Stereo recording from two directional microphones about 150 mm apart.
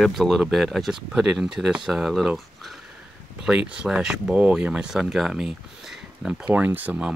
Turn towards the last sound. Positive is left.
turn(degrees=-10)  # may be behind; listen again after turning